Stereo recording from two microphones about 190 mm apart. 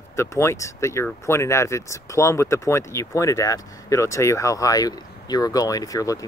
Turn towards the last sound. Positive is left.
turn(degrees=15)  # may be behind; listen again after turning